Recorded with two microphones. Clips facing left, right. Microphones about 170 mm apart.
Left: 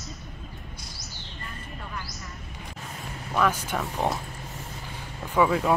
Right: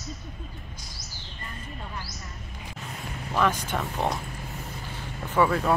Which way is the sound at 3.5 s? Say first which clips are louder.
Even; 10° left (ahead or behind).